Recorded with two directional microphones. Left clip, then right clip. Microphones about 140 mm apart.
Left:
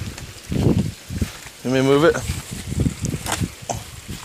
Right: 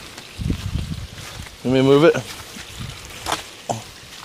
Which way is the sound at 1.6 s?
10° right (ahead or behind).